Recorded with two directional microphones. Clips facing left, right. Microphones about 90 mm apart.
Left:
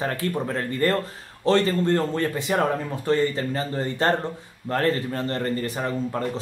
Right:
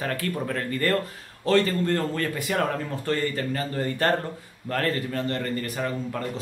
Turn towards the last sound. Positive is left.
turn(degrees=25)  # may be behind; listen again after turning